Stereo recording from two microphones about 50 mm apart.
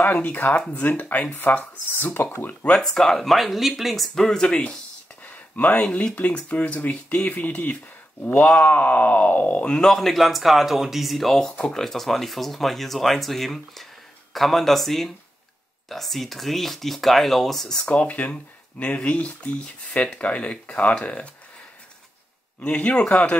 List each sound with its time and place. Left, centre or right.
0.0 s speech: left
2.7 s speech: centre
4.4 s speech: left
5.2 s a sound: left
6.1 s speech: left
9.7 s speech: centre
11.5 s speech: centre
11.8 s speech: centre
17.8 s speech: left
22.6 s speech: left